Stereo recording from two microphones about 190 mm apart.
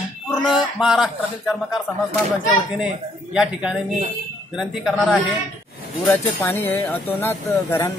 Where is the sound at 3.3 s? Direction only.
5° right (ahead or behind).